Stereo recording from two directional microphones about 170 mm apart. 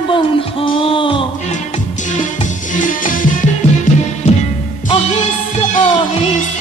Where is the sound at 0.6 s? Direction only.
30° left (ahead or behind).